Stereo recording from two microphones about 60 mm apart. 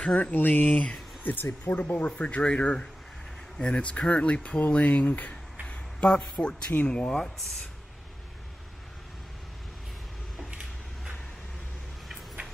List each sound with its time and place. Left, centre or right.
0.2 s speech: left